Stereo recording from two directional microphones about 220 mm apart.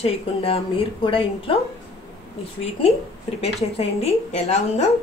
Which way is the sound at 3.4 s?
30° left (ahead or behind).